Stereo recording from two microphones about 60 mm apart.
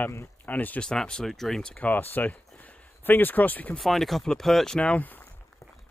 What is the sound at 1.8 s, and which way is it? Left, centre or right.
Speech, left.